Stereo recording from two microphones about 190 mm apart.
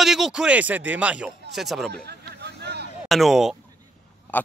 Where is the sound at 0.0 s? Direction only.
Centre (ahead or behind).